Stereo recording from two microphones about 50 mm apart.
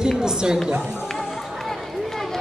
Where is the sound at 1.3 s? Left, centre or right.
Centre.